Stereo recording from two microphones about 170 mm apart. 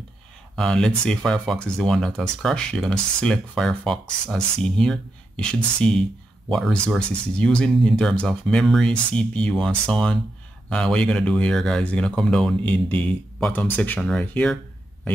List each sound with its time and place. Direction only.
0.6 s speech: 5° left (ahead or behind)